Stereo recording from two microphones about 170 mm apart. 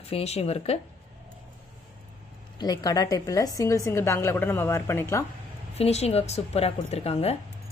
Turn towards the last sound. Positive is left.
turn(degrees=40)  # may be behind; listen again after turning